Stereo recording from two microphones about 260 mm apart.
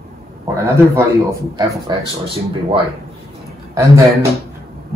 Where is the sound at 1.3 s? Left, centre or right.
Centre.